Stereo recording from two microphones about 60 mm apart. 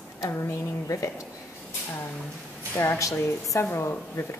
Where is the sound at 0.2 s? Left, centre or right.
Left.